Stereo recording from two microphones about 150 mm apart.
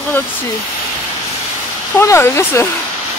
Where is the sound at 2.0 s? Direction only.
20° left (ahead or behind).